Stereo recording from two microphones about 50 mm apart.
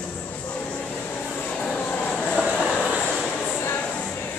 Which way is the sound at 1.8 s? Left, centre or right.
Left.